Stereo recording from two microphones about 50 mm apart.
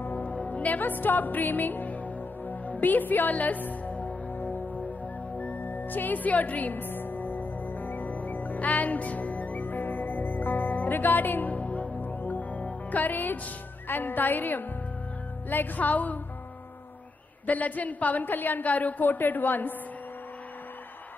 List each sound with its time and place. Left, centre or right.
0.0 s music: left
13.8 s a woman's voice: left
17.5 s a woman's voice: left